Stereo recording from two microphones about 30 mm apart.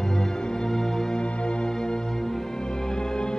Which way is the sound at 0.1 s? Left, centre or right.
Left.